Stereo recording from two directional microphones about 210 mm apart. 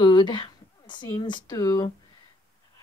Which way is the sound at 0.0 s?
20° left (ahead or behind).